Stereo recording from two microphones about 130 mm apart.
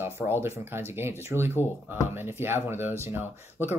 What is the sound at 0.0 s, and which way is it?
Speech, 20° right (ahead or behind).